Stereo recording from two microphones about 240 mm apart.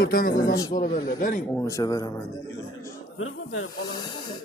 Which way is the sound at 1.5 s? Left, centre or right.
Centre.